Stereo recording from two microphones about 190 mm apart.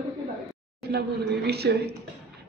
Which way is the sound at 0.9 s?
60° right (ahead or behind).